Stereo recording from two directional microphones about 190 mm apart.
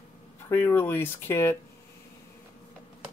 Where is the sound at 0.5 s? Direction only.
10° left (ahead or behind).